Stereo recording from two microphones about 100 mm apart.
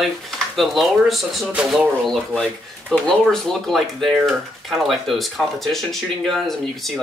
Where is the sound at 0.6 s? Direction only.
Centre (ahead or behind).